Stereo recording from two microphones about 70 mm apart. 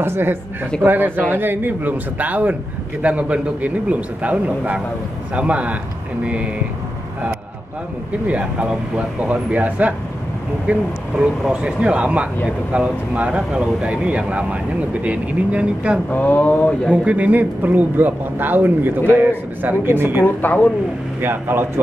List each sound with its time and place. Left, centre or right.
0.0 s speech: right
8.3 s speech: centre
16.1 s speech: left
16.9 s speech: centre
20.4 s speech: left
21.2 s speech: right